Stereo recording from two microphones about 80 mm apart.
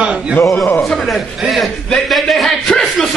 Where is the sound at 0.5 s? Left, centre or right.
Left.